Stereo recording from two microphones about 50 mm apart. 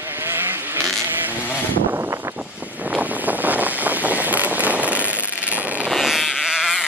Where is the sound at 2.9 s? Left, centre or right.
Right.